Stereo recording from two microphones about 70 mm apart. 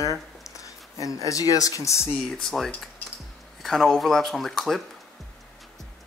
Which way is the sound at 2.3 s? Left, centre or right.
Centre.